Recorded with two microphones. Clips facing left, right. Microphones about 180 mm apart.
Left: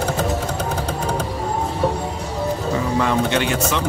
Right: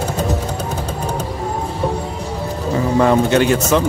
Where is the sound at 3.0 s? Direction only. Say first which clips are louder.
Right 8 dB; 40° right (ahead or behind).